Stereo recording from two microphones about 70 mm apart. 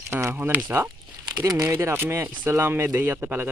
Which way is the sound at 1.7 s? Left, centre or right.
Right.